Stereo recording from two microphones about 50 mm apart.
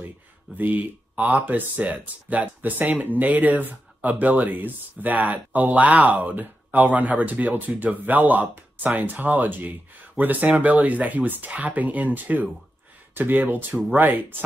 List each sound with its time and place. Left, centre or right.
0.6 s speech: right